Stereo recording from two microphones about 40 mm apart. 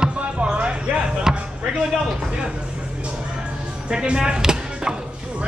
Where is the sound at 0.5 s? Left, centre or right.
Right.